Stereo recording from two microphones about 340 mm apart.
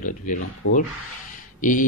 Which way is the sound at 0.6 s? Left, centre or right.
Left.